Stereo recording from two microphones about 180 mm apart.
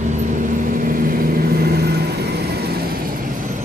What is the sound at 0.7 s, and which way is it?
Vehicle, 50° right (ahead or behind).